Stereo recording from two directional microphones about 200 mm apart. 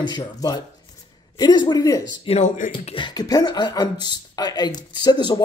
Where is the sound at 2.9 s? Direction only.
20° left (ahead or behind).